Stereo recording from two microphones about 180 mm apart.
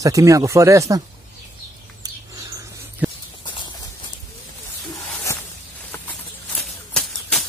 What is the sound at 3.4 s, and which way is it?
Clip-clop, 25° left (ahead or behind).